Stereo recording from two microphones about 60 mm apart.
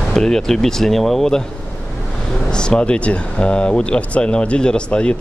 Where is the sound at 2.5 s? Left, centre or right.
Centre.